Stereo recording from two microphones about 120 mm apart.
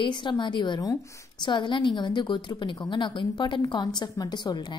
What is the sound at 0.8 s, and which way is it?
Speech, 25° left (ahead or behind).